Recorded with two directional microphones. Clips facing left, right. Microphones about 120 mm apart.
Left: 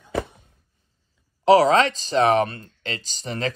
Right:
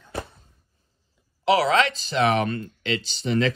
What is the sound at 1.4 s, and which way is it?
Speech, 35° left (ahead or behind).